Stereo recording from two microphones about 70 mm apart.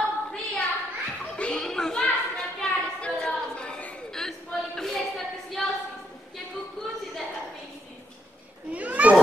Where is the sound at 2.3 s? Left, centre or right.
Centre.